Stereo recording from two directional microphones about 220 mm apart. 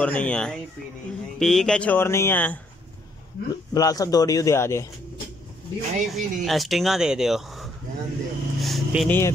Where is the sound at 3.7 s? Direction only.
15° left (ahead or behind).